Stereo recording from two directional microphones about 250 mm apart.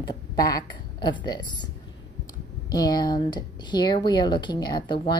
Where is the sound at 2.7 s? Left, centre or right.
Centre.